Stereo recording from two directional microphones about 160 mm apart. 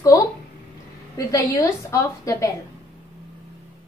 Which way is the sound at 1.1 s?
20° left (ahead or behind).